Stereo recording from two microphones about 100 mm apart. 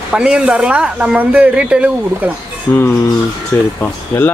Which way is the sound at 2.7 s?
20° left (ahead or behind).